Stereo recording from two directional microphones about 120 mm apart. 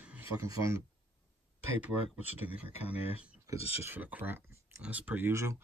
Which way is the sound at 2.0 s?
55° left (ahead or behind).